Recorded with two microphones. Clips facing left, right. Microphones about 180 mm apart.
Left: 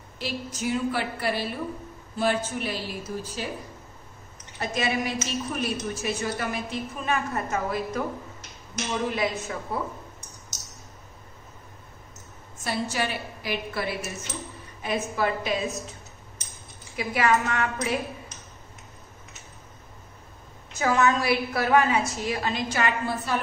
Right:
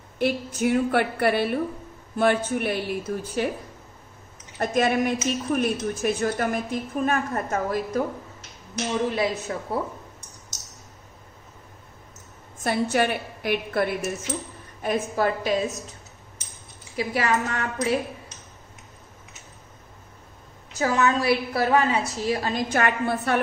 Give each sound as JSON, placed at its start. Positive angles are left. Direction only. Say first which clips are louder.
{"t": 0.2, "sound": "a woman's voice", "louder": "right 8 dB", "side_deg": -55}
{"t": 4.6, "sound": "a woman's voice", "louder": "right 6 dB", "side_deg": -50}
{"t": 9.1, "sound": "a woman's voice", "louder": "right 2 dB", "side_deg": -35}
{"t": 12.6, "sound": "a woman's voice", "louder": "right 6 dB", "side_deg": -55}
{"t": 16.9, "sound": "a woman's voice", "louder": "even", "side_deg": -35}
{"t": 20.7, "sound": "a woman's voice", "louder": "even", "side_deg": -35}